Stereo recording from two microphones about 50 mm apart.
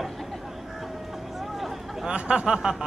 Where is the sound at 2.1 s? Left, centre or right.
Right.